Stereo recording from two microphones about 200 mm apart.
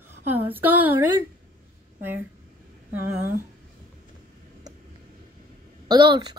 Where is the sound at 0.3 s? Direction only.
10° right (ahead or behind).